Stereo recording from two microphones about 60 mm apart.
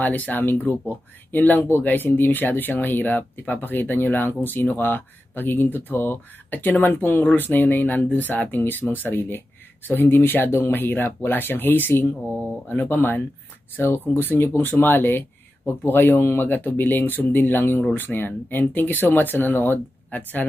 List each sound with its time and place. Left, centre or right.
0.0 s speech: left